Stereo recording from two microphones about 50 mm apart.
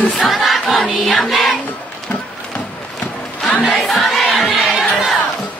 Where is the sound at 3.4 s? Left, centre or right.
Centre.